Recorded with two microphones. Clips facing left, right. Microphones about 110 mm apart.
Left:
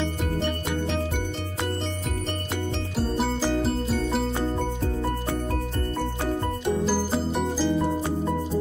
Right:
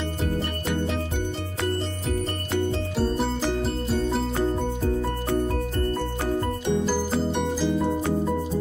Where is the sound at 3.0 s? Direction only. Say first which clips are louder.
Even; centre (ahead or behind).